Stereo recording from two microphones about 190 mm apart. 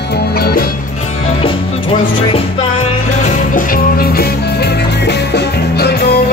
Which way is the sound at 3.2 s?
45° left (ahead or behind).